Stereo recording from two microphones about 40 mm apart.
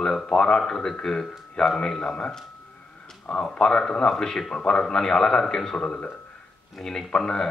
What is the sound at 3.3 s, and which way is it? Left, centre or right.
A man's voice, left.